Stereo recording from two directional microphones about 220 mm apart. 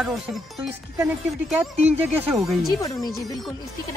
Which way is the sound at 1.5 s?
5° right (ahead or behind).